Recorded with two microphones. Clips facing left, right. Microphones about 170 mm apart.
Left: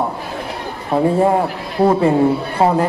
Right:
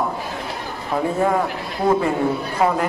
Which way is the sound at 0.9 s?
30° left (ahead or behind).